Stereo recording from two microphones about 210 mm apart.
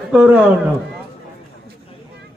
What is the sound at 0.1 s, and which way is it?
Speech, 5° right (ahead or behind).